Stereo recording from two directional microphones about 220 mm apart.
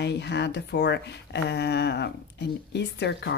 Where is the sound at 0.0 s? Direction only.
50° left (ahead or behind).